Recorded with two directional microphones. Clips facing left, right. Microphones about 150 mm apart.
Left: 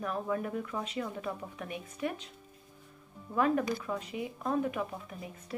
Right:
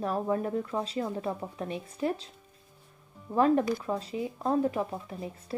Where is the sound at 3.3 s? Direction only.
30° right (ahead or behind).